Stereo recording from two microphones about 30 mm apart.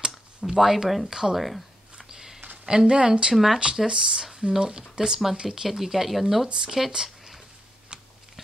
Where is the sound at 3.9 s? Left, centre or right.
Right.